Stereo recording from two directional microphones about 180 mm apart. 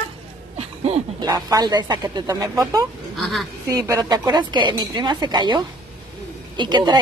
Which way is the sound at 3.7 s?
20° right (ahead or behind).